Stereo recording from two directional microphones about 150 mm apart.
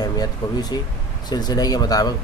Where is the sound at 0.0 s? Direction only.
25° left (ahead or behind).